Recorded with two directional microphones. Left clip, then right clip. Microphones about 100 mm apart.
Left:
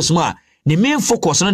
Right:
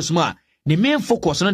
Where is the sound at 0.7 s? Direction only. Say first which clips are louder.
Left 2 dB; 25° left (ahead or behind).